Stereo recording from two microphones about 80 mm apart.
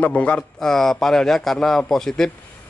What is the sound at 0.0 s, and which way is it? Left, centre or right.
Speech, centre.